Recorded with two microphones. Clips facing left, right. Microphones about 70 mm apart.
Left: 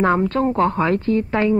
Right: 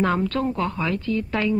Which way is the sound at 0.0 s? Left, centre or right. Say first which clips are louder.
Left 5 dB; left.